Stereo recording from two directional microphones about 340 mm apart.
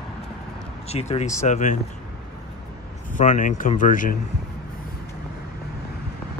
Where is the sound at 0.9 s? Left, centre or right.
Centre.